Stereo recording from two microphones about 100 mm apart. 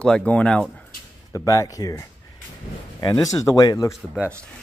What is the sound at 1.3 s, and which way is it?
Speech, 30° left (ahead or behind).